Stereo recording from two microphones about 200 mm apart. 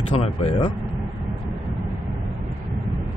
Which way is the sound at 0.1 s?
30° left (ahead or behind).